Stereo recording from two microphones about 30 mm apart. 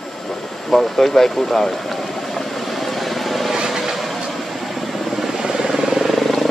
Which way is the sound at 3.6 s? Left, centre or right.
Centre.